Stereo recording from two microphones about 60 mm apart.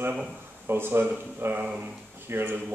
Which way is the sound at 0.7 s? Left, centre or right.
Right.